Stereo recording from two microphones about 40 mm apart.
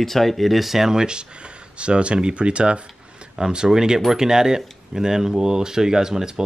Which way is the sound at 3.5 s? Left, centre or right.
Centre.